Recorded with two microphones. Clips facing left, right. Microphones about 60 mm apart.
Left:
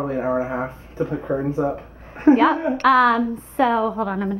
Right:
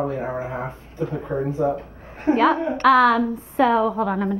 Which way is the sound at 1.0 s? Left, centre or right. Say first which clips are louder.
Left 2 dB; centre.